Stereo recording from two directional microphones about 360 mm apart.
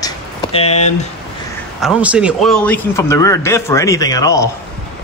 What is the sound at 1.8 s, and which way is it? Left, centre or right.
A man's voice, centre.